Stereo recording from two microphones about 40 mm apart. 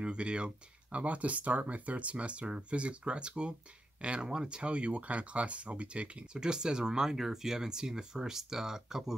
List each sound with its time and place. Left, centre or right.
0.0 s speech: right
0.9 s speech: right
6.3 s speech: centre